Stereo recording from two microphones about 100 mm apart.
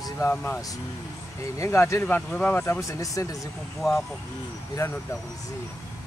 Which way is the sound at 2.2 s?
10° left (ahead or behind).